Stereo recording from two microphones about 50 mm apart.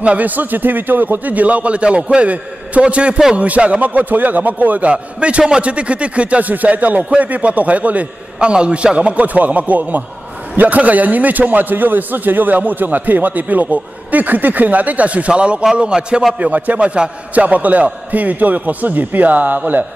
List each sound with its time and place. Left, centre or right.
0.0 s a man's voice: right
16.3 s a man's voice: right